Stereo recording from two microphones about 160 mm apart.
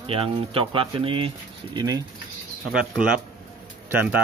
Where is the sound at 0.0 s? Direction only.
35° right (ahead or behind).